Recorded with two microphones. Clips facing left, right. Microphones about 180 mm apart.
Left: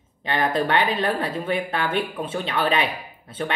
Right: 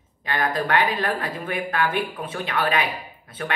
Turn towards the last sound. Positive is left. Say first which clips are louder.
# left 3 dB
turn(degrees=25)  # may be behind; listen again after turning